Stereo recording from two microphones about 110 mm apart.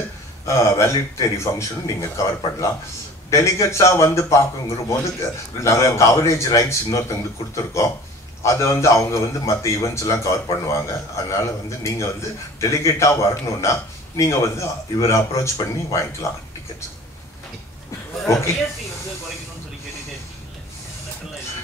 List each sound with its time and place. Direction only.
0.6 s a man's voice: 30° left (ahead or behind)